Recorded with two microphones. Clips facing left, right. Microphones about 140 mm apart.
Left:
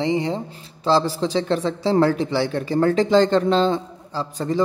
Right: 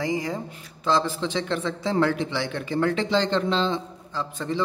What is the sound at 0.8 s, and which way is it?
A man's voice, 35° left (ahead or behind).